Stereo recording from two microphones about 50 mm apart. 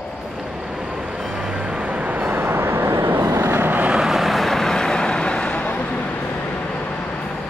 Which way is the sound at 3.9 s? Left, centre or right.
Centre.